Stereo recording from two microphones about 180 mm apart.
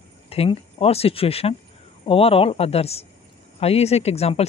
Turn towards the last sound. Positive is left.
turn(degrees=35)  # may be behind; listen again after turning